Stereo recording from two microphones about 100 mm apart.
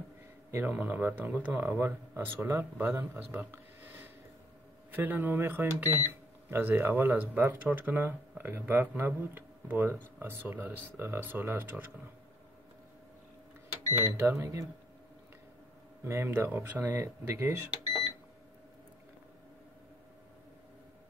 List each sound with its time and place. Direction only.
0.5 s speech: 25° right (ahead or behind)
13.8 s speech: 25° right (ahead or behind)
16.0 s speech: 25° right (ahead or behind)